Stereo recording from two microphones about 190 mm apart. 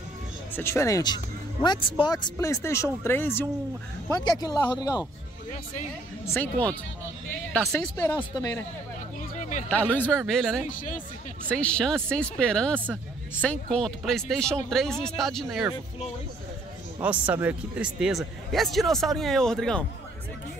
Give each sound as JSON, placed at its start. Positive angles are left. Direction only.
{"t": 0.6, "sound": "a man's voice", "side_deg": 15}
{"t": 6.3, "sound": "a man's voice", "side_deg": 10}
{"t": 9.4, "sound": "a sound", "side_deg": 40}
{"t": 9.7, "sound": "speech", "side_deg": 10}
{"t": 10.6, "sound": "speech", "side_deg": 45}
{"t": 11.5, "sound": "speech", "side_deg": 5}
{"t": 17.0, "sound": "speech", "side_deg": -10}